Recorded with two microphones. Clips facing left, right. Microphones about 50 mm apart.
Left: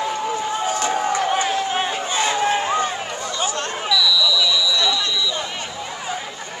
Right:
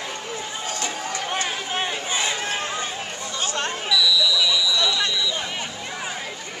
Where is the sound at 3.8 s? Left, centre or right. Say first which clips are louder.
Left 2 dB; centre.